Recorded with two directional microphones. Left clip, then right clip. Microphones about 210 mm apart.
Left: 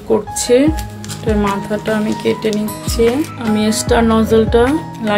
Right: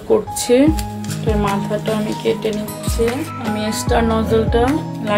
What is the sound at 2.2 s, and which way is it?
Music, 20° left (ahead or behind).